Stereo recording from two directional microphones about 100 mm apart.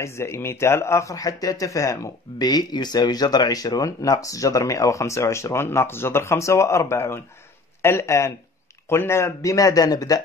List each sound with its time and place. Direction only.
0.0 s speech: 25° left (ahead or behind)